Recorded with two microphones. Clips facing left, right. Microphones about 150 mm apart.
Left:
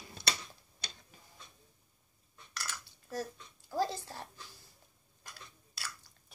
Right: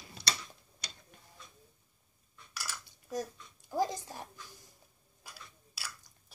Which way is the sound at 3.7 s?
15° right (ahead or behind).